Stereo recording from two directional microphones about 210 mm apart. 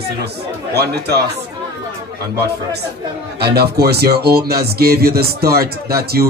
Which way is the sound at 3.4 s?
50° right (ahead or behind).